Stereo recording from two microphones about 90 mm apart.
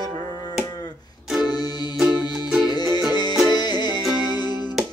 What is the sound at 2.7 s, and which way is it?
Music, 50° left (ahead or behind).